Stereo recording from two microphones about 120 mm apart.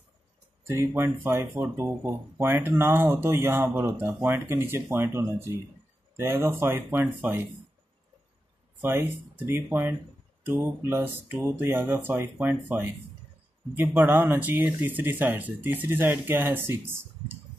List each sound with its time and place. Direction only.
0.7 s speech: 20° right (ahead or behind)
8.8 s speech: 20° right (ahead or behind)
14.0 s speech: 15° right (ahead or behind)